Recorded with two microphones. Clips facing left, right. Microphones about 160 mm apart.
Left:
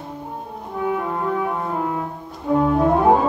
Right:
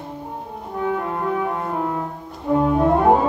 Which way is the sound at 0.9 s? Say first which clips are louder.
Left 1 dB; centre (ahead or behind).